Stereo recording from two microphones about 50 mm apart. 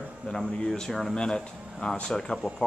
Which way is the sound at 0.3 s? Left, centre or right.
Centre.